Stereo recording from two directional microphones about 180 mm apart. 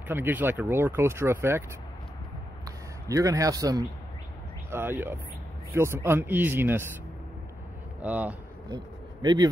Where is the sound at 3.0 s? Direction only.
20° right (ahead or behind).